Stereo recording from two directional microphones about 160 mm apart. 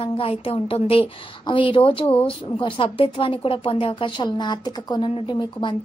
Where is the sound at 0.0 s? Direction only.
35° left (ahead or behind).